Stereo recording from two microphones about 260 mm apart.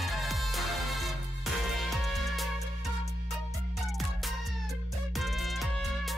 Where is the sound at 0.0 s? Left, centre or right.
Centre.